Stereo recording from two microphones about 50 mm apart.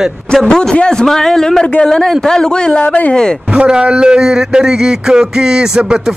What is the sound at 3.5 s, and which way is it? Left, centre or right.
Speech, centre.